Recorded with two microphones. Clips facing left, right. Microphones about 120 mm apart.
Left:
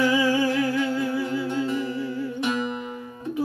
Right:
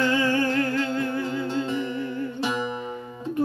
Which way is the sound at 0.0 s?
10° left (ahead or behind).